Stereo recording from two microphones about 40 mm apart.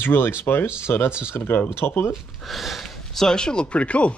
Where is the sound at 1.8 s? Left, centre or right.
Left.